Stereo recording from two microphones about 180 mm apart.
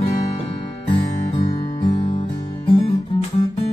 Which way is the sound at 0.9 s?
35° left (ahead or behind).